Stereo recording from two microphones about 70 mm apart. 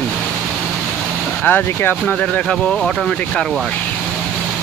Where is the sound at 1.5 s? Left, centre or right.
Left.